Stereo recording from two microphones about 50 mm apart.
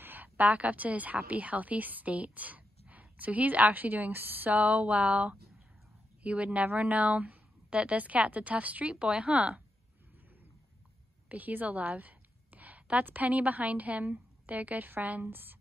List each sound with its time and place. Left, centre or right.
0.0 s a woman's voice: right
8.9 s speech: centre
11.2 s a sound: right
13.0 s a woman's voice: right
15.2 s a woman's voice: right